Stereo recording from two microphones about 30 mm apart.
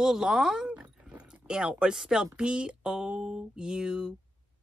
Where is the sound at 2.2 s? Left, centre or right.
Right.